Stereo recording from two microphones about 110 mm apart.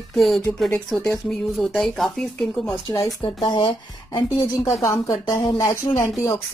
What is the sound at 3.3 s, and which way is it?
Speech, 45° left (ahead or behind).